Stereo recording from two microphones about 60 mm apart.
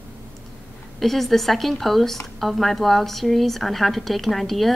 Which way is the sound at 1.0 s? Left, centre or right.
Centre.